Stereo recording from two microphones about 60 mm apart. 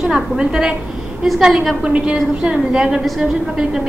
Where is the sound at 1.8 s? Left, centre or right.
Centre.